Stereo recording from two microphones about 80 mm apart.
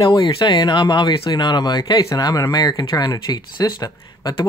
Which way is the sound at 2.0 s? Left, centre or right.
Left.